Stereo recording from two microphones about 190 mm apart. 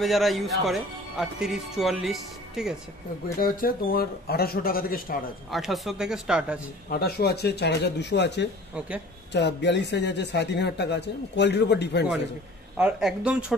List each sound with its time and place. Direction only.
0.0 s speech: centre (ahead or behind)
3.3 s speech: 50° left (ahead or behind)
5.5 s speech: centre (ahead or behind)
6.9 s speech: 55° left (ahead or behind)
8.7 s speech: 5° right (ahead or behind)
9.3 s speech: 65° left (ahead or behind)
12.7 s speech: 5° right (ahead or behind)